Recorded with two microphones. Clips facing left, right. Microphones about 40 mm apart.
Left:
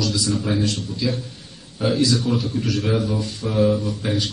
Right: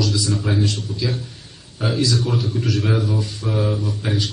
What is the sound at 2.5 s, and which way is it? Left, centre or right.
Speech, right.